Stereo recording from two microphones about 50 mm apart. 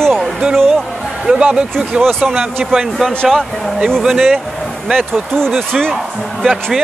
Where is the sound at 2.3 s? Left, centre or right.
Centre.